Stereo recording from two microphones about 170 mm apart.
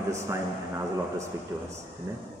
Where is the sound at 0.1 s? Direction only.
15° right (ahead or behind).